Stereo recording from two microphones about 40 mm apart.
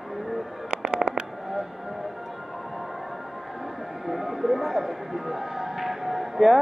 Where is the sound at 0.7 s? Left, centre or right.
Right.